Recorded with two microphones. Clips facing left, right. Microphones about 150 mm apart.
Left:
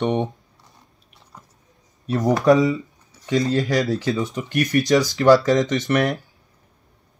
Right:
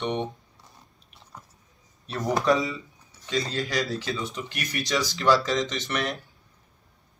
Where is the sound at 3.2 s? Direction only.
45° left (ahead or behind).